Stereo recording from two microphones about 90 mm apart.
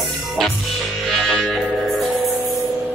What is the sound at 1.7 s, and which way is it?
Music, centre (ahead or behind).